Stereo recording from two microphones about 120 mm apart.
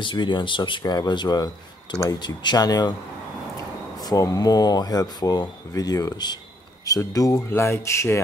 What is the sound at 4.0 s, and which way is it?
Speech, 30° left (ahead or behind).